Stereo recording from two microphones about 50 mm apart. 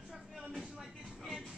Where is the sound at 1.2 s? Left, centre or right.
Centre.